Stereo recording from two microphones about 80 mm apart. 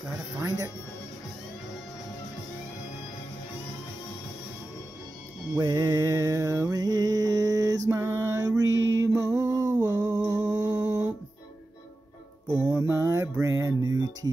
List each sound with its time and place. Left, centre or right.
0.4 s speech: right
5.6 s mantra: right
8.0 s a sound: right
8.4 s mantra: right
8.8 s music: right
9.8 s a sound: right
10.5 s mantra: right
12.4 s mantra: right
13.0 s a sound: right